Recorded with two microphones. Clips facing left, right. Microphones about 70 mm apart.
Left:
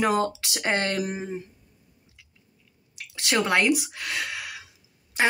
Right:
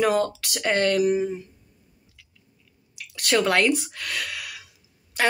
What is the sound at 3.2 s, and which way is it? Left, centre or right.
Speech, centre.